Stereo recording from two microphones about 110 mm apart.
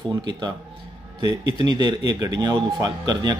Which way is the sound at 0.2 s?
40° right (ahead or behind).